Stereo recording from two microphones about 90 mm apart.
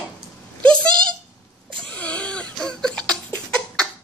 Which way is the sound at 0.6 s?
10° left (ahead or behind).